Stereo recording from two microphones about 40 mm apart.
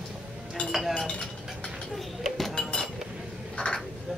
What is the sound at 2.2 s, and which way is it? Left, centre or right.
Chink, centre.